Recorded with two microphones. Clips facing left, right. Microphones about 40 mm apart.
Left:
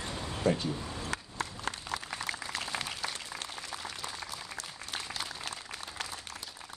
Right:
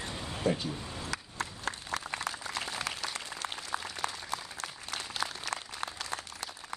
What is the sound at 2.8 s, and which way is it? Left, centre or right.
Applause, right.